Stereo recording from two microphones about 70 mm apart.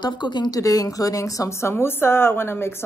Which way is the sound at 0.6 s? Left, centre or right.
Left.